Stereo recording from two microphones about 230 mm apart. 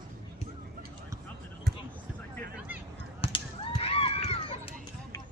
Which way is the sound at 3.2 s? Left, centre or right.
Left.